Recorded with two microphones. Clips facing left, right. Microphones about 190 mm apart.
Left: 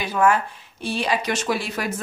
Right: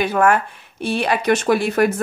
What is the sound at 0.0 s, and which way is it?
Speech, 60° right (ahead or behind).